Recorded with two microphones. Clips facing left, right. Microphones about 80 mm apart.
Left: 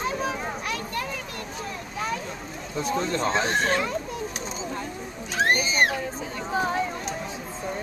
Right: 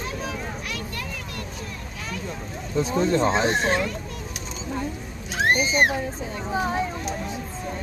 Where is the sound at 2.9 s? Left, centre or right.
Centre.